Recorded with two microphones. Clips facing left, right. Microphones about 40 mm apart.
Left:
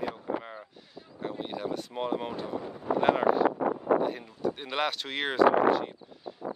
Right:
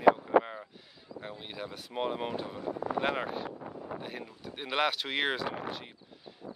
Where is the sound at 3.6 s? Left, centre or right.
Left.